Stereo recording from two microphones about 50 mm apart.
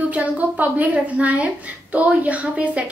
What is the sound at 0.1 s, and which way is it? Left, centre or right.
A woman's voice, right.